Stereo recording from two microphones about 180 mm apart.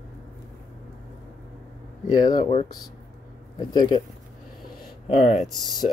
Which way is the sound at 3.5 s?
25° left (ahead or behind).